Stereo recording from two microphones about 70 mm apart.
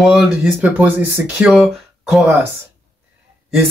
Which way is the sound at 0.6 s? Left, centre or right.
Right.